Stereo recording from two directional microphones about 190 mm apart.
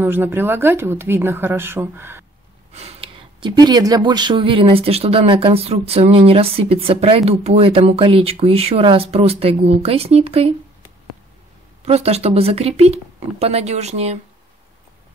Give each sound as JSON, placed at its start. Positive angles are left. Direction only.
{"t": 0.0, "sound": "speech", "side_deg": -10}
{"t": 2.7, "sound": "speech", "side_deg": -35}
{"t": 11.8, "sound": "speech", "side_deg": -35}